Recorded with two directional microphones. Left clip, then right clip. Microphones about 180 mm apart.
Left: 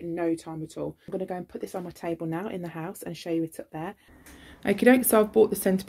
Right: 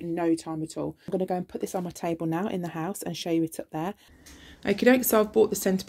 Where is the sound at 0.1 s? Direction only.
65° right (ahead or behind).